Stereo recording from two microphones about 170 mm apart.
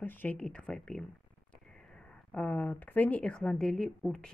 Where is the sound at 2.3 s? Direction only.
5° left (ahead or behind).